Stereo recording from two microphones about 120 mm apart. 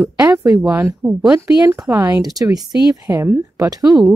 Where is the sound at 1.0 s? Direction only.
10° right (ahead or behind).